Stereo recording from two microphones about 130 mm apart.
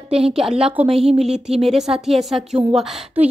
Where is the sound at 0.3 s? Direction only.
5° right (ahead or behind).